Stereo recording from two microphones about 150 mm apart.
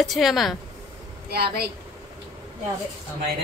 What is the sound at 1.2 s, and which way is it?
Speech, 90° right.